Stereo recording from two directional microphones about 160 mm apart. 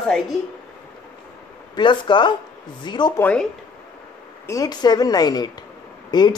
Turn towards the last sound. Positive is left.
turn(degrees=25)  # may be behind; listen again after turning